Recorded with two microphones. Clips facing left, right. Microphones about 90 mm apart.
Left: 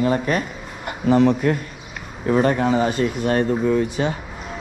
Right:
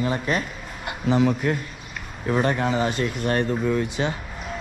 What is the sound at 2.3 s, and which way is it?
A man's voice, 40° left (ahead or behind).